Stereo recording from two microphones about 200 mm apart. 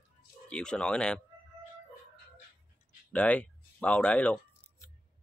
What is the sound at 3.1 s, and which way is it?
Speech, 5° left (ahead or behind).